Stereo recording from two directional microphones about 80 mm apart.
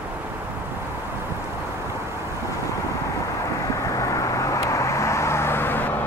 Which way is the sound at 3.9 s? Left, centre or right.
Left.